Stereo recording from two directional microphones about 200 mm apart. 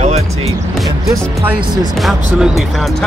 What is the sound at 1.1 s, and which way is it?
Speech, 15° right (ahead or behind).